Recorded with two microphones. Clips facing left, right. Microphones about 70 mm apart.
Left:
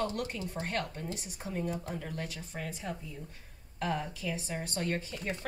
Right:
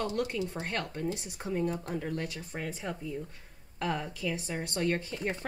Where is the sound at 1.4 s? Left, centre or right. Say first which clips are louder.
Right 4 dB; right.